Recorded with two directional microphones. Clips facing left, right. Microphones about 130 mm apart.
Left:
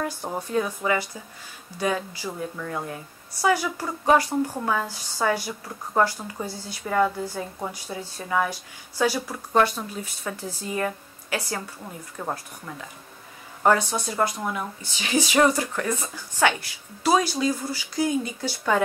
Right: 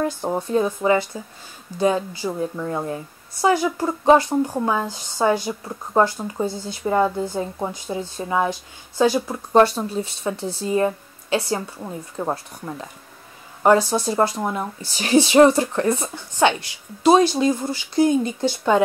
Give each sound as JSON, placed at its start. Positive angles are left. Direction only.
{"t": 0.0, "sound": "a woman's voice", "side_deg": -25}
{"t": 13.7, "sound": "a woman's voice", "side_deg": -35}